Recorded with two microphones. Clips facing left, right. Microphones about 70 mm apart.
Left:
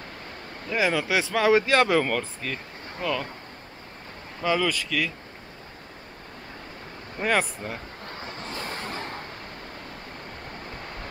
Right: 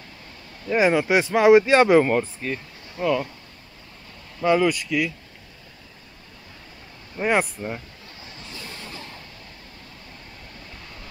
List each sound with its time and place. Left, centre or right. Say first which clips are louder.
0.7 s speech: right 5 dB; right
4.4 s speech: right 5 dB; centre
7.2 s speech: right 3 dB; centre
8.1 s vehicle: left 6 dB; left